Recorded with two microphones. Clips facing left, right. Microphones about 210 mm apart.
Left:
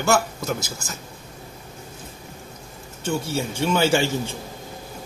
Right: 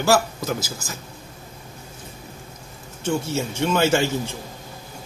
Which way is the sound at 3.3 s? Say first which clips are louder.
Left 2 dB; 5° left (ahead or behind).